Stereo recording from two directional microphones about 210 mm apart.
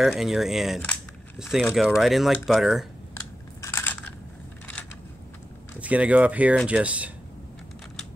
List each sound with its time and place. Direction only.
0.0 s speech: centre (ahead or behind)
3.6 s crushing: 10° left (ahead or behind)
5.8 s speech: 5° right (ahead or behind)